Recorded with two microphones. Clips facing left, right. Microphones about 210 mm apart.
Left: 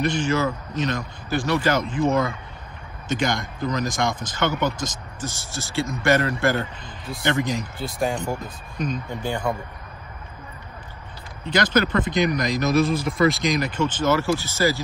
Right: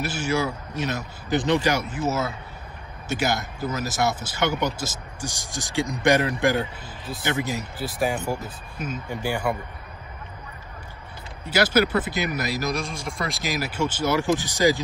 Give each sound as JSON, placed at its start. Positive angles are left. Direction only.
{"t": 0.0, "sound": "speech", "side_deg": -5}
{"t": 1.3, "sound": "speech", "side_deg": -20}
{"t": 1.8, "sound": "speech", "side_deg": -5}
{"t": 11.4, "sound": "speech", "side_deg": -10}